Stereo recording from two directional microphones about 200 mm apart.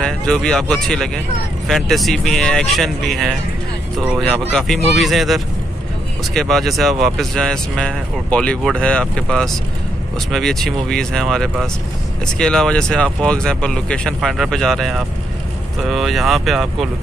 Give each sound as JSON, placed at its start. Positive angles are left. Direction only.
{"t": 0.0, "sound": "speech", "side_deg": 5}